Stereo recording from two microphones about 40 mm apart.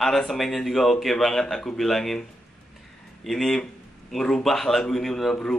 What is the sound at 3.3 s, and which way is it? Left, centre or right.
A man's voice, centre.